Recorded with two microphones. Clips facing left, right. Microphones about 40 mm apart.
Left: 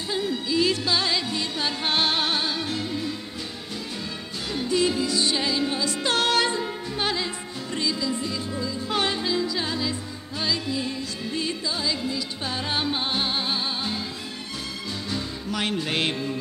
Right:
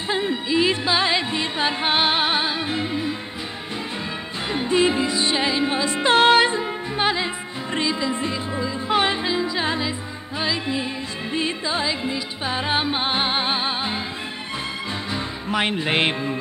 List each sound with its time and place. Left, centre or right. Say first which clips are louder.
0.1 s music: right 4 dB; right
4.5 s music: right 4 dB; right
15.0 s music: right 3 dB; right